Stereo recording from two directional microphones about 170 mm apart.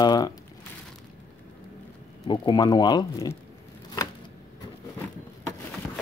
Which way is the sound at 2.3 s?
25° left (ahead or behind).